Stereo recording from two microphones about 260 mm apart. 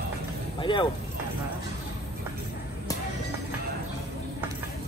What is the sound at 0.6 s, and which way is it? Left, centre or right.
Speech, centre.